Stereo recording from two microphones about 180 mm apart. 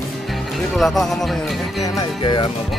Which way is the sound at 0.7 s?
Centre (ahead or behind).